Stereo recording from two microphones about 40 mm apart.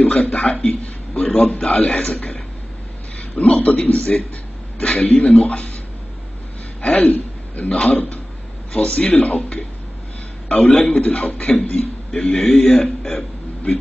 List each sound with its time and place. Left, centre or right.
0.0 s a man's voice: left
6.8 s a man's voice: left
10.9 s a man's voice: left
12.5 s a man's voice: left
12.8 s a man's voice: centre